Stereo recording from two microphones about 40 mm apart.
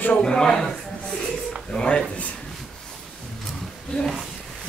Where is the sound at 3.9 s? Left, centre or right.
Left.